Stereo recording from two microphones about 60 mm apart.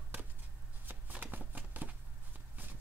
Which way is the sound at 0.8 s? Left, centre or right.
Right.